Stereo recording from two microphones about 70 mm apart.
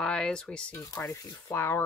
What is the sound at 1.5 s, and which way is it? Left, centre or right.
Speech, left.